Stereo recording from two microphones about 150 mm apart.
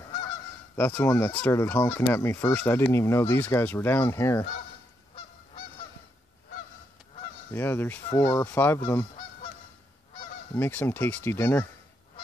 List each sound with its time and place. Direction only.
0.7 s speech: 15° left (ahead or behind)
7.5 s speech: 15° left (ahead or behind)
10.5 s speech: 15° left (ahead or behind)